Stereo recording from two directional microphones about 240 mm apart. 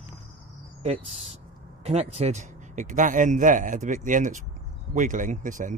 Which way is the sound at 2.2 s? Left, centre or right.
Right.